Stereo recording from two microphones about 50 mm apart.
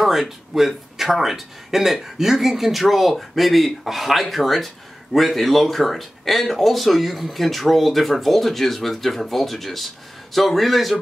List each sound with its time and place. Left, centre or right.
0.0 s speech: centre